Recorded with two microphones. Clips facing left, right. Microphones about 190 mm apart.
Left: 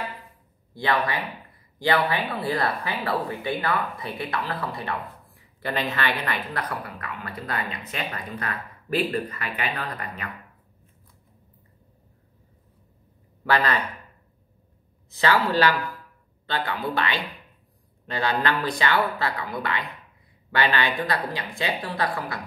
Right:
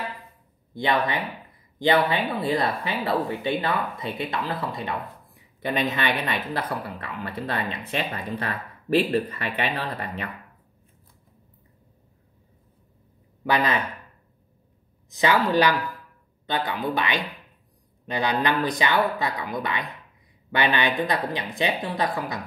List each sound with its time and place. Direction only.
0.7 s speech: 20° right (ahead or behind)
13.4 s speech: 15° right (ahead or behind)
15.0 s speech: 15° right (ahead or behind)